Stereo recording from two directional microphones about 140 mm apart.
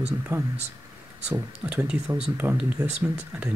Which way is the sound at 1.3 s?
10° right (ahead or behind).